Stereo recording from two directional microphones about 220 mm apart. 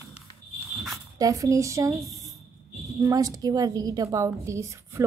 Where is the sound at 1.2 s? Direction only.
15° right (ahead or behind).